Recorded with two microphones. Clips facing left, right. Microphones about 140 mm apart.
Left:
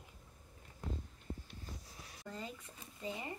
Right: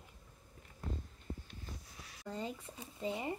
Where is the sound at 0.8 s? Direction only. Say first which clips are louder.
Even; 15° left (ahead or behind).